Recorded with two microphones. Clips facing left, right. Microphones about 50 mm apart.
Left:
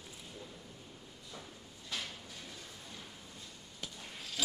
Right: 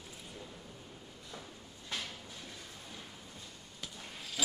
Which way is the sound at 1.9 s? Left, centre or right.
Right.